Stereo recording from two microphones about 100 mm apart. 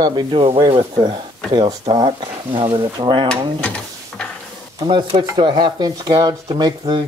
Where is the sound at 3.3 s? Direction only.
10° left (ahead or behind).